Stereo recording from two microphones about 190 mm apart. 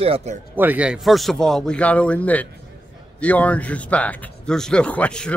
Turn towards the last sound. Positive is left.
turn(degrees=5)  # may be behind; listen again after turning